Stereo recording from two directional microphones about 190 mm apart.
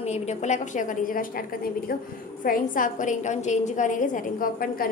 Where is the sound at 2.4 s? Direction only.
45° left (ahead or behind).